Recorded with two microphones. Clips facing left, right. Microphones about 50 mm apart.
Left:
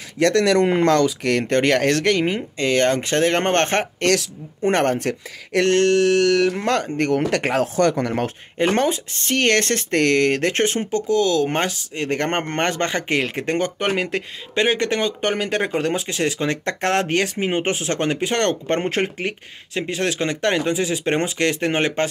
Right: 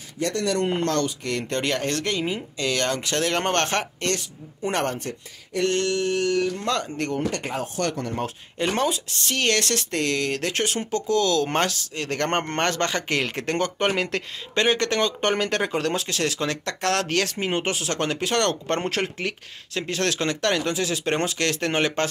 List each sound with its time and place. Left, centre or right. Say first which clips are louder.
0.2 s speech: left 9 dB; left
1.5 s speech: left 8 dB; left
4.0 s speech: left 8 dB; left
4.6 s speech: left 7 dB; left
8.5 s speech: left 5 dB; left
9.9 s speech: left 9 dB; left
11.1 s speech: left 3 dB; centre